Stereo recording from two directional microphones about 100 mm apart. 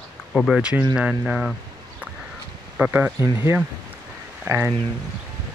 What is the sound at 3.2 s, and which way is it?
Speech, 30° right (ahead or behind).